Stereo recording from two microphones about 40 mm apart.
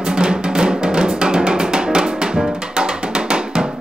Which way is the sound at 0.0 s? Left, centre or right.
Right.